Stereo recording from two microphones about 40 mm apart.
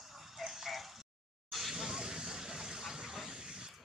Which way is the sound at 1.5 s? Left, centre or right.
Centre.